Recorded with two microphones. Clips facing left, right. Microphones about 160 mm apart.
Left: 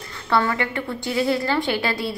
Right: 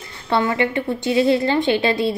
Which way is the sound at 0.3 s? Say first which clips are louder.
Right 3 dB; 20° right (ahead or behind).